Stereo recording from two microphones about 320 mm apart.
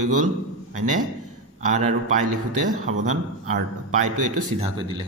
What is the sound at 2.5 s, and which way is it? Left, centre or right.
Speech, right.